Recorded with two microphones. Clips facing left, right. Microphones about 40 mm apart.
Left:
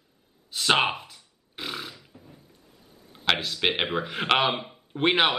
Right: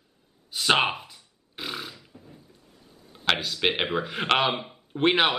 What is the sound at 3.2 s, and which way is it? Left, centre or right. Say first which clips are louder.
Speech: even; centre.